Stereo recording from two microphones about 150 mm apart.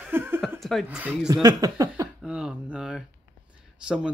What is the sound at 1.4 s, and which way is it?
Speech, 25° right (ahead or behind).